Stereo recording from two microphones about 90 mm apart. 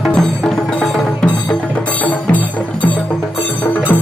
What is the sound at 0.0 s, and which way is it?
Music, 5° left (ahead or behind).